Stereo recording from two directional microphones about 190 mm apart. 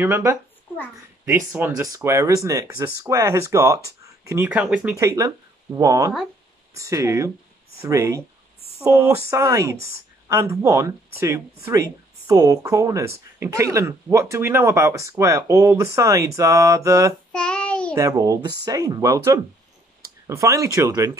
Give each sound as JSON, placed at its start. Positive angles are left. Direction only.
{"t": 0.0, "sound": "speech", "side_deg": -15}
{"t": 17.3, "sound": "child singing", "side_deg": 5}
{"t": 17.9, "sound": "speech", "side_deg": -15}